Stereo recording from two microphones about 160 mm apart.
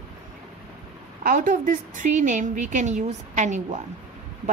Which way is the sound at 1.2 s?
55° right (ahead or behind).